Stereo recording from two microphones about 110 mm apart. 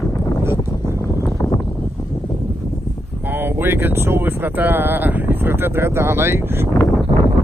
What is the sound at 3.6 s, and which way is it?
Speech, 20° right (ahead or behind).